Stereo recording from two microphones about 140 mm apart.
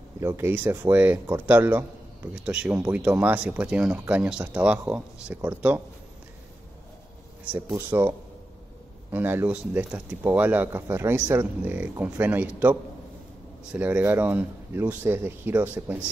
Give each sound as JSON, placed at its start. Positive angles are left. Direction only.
{"t": 0.2, "sound": "speech", "side_deg": -15}
{"t": 7.4, "sound": "speech", "side_deg": -15}